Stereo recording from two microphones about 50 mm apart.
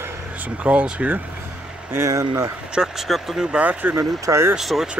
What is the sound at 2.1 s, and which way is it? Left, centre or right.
Speech, right.